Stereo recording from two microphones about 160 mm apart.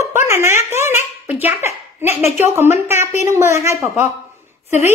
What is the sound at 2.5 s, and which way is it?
A child's voice, 15° right (ahead or behind).